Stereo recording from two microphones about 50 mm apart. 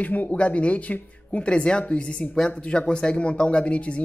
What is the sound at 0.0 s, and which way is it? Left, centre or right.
Speech, left.